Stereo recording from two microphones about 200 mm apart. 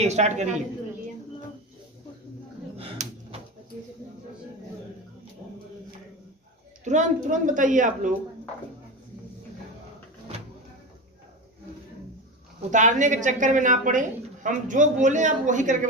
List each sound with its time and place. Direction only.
0.0 s a man's voice: 35° right (ahead or behind)
2.8 s a sound: 30° right (ahead or behind)
6.8 s a woman's voice: 35° right (ahead or behind)
12.7 s a woman's voice: 40° right (ahead or behind)